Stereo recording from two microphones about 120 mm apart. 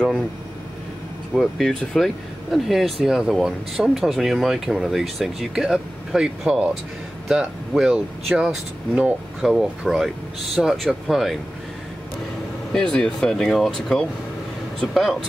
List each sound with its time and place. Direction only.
1.3 s speech: centre (ahead or behind)
12.7 s speech: 5° left (ahead or behind)